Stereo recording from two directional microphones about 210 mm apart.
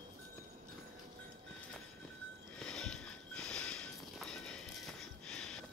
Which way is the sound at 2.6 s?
5° left (ahead or behind).